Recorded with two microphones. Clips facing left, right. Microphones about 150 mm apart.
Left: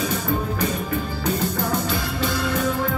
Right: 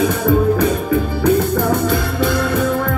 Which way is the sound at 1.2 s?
55° right (ahead or behind).